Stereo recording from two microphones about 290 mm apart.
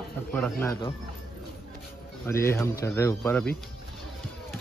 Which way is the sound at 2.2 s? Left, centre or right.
Centre.